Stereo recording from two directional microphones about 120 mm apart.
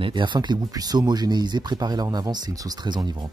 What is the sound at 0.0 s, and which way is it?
Speech, 40° right (ahead or behind).